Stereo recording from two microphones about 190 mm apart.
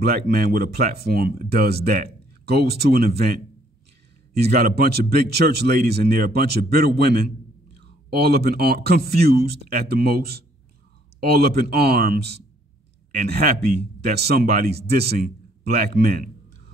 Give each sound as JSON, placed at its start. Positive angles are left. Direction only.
{"t": 0.0, "sound": "speech", "side_deg": -55}